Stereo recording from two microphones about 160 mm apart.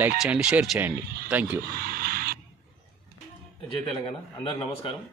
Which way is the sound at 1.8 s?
70° right (ahead or behind).